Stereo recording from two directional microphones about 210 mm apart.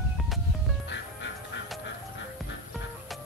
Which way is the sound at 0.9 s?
60° left (ahead or behind).